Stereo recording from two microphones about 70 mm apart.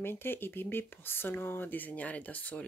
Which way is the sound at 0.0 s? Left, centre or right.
Left.